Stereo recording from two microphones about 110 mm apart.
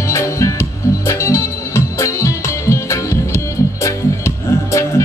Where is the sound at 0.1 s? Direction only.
30° left (ahead or behind).